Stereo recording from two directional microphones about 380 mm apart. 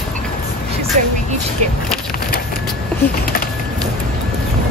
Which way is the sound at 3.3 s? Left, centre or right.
Left.